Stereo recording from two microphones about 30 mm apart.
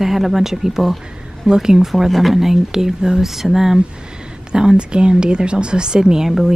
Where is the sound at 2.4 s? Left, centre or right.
Centre.